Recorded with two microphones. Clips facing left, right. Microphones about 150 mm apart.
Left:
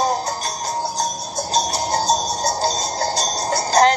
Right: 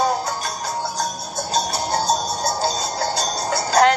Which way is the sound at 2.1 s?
35° left (ahead or behind).